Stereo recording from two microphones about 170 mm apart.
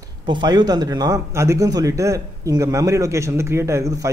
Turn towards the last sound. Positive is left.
turn(degrees=-20)  # may be behind; listen again after turning